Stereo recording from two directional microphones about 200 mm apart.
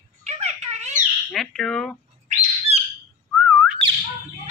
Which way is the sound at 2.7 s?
30° right (ahead or behind).